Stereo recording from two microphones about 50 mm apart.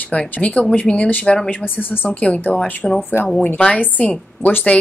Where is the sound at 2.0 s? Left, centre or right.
Left.